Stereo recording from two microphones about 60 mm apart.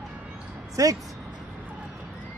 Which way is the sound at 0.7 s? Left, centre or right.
Right.